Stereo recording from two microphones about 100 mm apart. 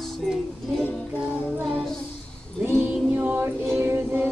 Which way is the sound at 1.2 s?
15° right (ahead or behind).